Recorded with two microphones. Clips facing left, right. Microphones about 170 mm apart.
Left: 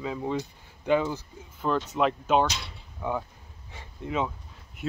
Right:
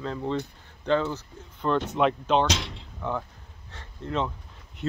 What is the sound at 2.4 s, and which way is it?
Speech, 90° right.